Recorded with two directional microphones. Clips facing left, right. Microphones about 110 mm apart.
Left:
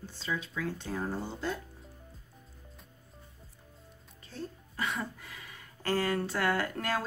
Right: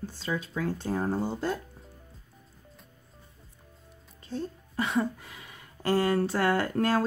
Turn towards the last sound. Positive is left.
turn(degrees=-35)  # may be behind; listen again after turning